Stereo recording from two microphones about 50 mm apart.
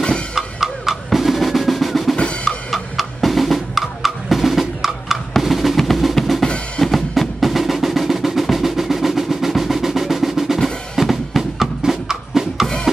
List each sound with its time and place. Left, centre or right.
0.3 s drum: centre
6.1 s drum kit: centre
6.8 s percussion: centre
10.6 s drum: centre